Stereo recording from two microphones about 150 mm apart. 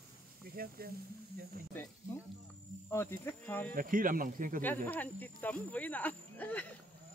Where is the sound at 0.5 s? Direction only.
90° right.